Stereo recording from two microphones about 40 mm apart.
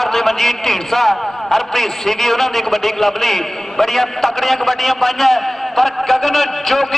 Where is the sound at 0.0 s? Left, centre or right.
Centre.